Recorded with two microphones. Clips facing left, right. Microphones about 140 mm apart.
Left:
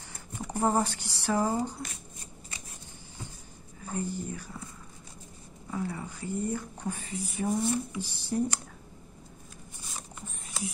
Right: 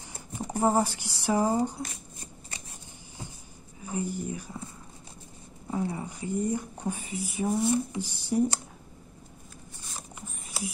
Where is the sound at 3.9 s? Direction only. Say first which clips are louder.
Right 2 dB; 15° right (ahead or behind).